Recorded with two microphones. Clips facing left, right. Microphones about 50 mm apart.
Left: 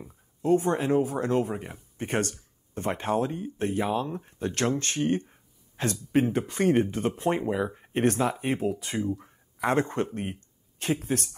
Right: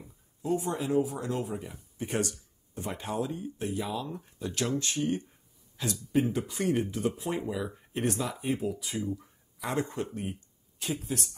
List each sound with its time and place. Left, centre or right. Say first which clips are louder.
0.1 s speech: left 7 dB; left